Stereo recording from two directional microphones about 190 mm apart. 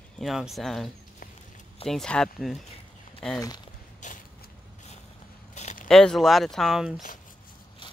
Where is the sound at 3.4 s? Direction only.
20° left (ahead or behind).